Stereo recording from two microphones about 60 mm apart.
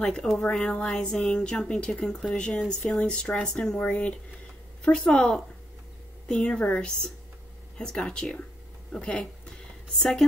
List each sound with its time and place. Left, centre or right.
0.0 s a woman's voice: centre